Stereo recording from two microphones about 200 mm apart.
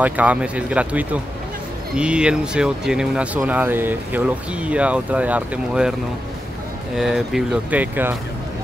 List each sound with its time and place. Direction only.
0.0 s speech: 5° right (ahead or behind)
7.0 s speech: centre (ahead or behind)